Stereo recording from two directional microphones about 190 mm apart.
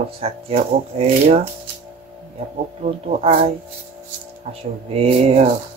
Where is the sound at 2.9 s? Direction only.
30° right (ahead or behind).